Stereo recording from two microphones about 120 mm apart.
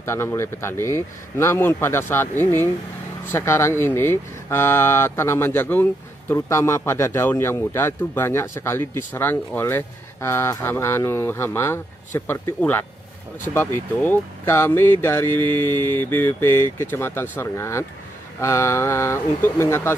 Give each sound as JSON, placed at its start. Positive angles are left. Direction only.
{"t": 0.0, "sound": "speech", "side_deg": 20}